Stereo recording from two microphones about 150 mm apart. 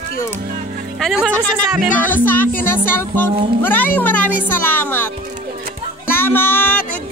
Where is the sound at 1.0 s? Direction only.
5° right (ahead or behind).